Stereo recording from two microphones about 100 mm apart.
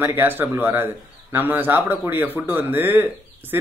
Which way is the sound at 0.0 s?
20° right (ahead or behind).